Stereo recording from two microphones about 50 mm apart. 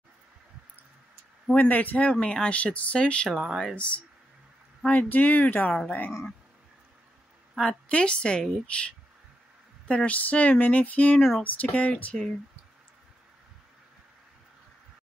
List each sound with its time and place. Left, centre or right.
1.5 s speech: left
3.3 s speech: centre
3.7 s speech: left
7.6 s speech: centre
11.1 s speech: centre
11.4 s speech: left